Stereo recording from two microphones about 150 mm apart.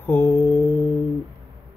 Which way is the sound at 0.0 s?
15° left (ahead or behind).